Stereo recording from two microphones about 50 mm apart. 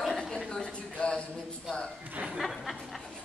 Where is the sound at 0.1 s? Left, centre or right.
Centre.